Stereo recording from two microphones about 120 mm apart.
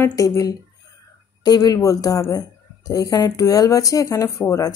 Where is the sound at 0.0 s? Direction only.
25° left (ahead or behind).